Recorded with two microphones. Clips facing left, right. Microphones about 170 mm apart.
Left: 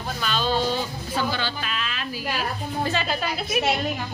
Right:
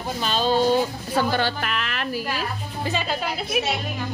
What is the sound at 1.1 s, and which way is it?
A woman's voice, 55° right (ahead or behind).